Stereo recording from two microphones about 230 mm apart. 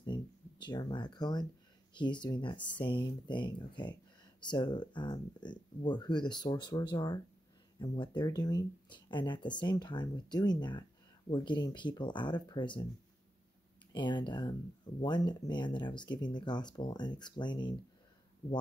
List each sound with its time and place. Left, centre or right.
0.0 s a sound: centre
2.0 s speech: centre
13.9 s speech: centre